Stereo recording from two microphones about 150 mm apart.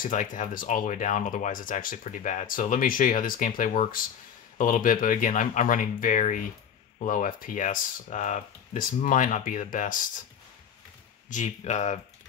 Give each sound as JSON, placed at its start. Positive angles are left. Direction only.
{"t": 0.0, "sound": "speech", "side_deg": 60}
{"t": 11.2, "sound": "speech", "side_deg": 55}